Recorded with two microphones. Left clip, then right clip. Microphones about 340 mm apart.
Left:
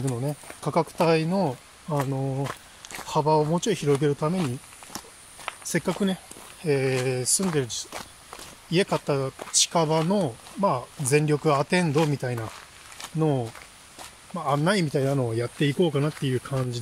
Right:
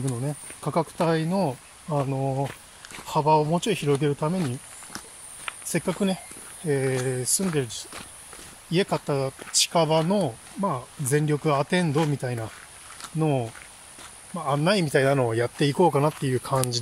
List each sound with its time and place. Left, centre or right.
0.0 s speech: centre
5.7 s speech: centre
15.0 s speech: right
15.3 s speech: centre